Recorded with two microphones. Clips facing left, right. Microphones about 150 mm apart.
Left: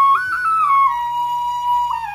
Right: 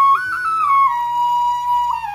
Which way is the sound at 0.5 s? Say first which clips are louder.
Right 1 dB; 35° right (ahead or behind).